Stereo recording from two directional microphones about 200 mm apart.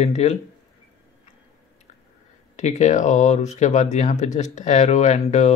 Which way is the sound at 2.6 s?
35° left (ahead or behind).